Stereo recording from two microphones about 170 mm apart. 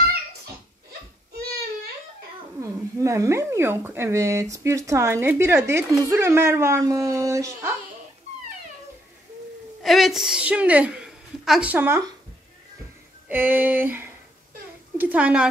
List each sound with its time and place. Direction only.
2.6 s speech: 20° right (ahead or behind)
9.8 s a woman's voice: centre (ahead or behind)
13.3 s speech: 10° right (ahead or behind)